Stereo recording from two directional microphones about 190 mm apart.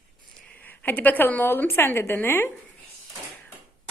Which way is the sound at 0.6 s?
10° left (ahead or behind).